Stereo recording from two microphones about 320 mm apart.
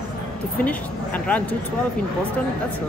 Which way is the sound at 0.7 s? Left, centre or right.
Centre.